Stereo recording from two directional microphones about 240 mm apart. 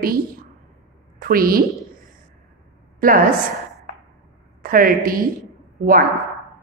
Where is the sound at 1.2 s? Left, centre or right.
Right.